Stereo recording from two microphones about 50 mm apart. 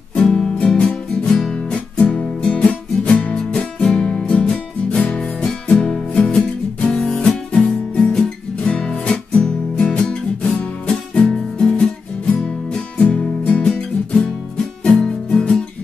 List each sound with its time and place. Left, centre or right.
0.1 s music: left
13.7 s music: centre